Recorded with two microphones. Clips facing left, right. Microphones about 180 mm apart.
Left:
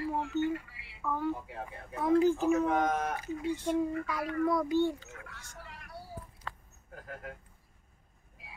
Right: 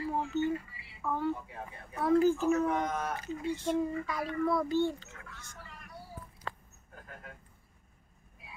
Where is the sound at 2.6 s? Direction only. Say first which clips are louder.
Left 3 dB; 90° left.